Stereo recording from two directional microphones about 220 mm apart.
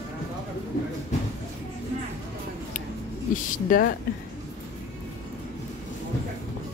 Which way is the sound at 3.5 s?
40° left (ahead or behind).